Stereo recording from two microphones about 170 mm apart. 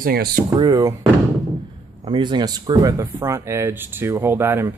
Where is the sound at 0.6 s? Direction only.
20° right (ahead or behind).